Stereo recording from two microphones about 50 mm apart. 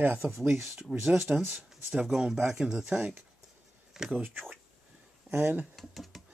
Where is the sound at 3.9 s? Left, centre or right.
Centre.